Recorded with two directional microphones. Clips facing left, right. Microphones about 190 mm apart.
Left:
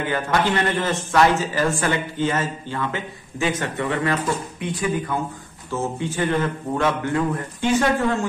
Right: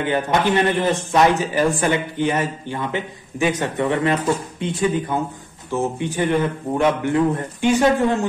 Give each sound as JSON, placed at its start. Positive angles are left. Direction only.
{"t": 0.0, "sound": "a man's voice", "side_deg": -20}